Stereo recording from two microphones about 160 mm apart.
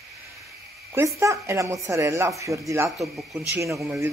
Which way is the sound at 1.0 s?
20° right (ahead or behind).